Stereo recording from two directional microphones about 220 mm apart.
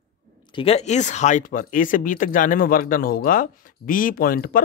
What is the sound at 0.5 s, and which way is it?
Speech, 25° left (ahead or behind).